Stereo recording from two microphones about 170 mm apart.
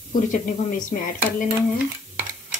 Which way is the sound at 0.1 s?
50° left (ahead or behind).